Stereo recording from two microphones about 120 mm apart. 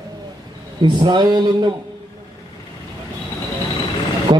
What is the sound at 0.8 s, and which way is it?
Speech, 40° right (ahead or behind).